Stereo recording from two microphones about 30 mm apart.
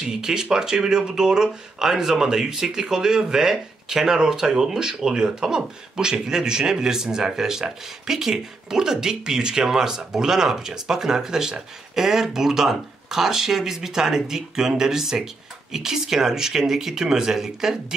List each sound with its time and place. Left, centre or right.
0.0 s speech: centre